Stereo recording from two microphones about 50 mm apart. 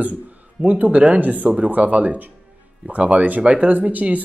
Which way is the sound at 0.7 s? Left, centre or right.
Right.